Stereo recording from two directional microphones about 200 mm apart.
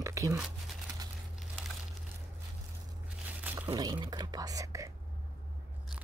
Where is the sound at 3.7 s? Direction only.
20° right (ahead or behind).